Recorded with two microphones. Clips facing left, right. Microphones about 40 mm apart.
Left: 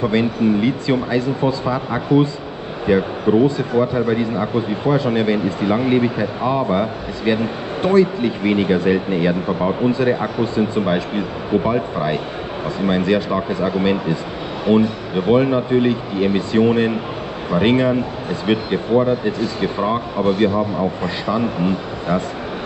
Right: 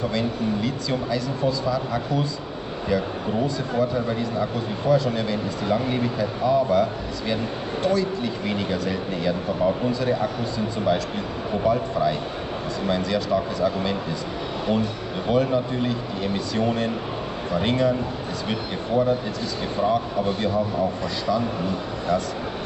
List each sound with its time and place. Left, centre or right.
0.0 s a man's voice: left